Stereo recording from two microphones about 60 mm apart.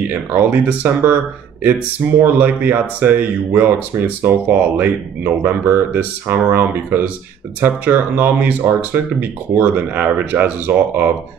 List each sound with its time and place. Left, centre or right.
0.1 s speech: right